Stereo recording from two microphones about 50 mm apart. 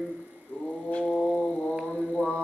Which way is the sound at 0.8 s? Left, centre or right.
Left.